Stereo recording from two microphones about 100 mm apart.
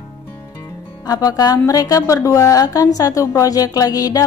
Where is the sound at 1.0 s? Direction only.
40° left (ahead or behind).